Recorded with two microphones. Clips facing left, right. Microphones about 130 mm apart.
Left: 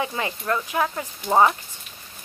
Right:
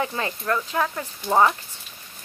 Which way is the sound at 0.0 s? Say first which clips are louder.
Even; 15° left (ahead or behind).